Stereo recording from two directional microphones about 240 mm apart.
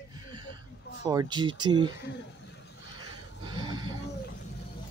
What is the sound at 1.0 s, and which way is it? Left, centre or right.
Speech, centre.